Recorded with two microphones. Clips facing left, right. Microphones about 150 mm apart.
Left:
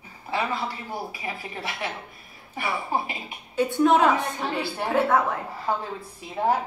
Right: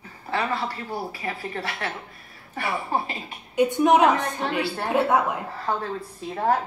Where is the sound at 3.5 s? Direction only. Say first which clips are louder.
Right 2 dB; 15° right (ahead or behind).